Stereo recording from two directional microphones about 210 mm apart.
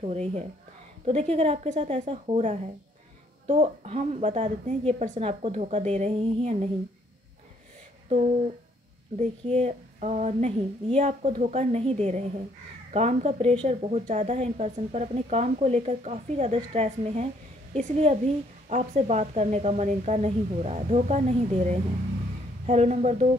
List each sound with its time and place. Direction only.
0.0 s a woman's voice: 30° right (ahead or behind)
9.2 s a woman's voice: 30° right (ahead or behind)